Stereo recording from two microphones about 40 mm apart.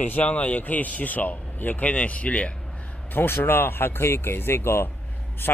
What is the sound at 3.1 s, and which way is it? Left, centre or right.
Speech, left.